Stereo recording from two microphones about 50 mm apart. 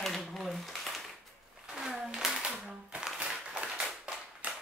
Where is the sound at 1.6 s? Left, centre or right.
Centre.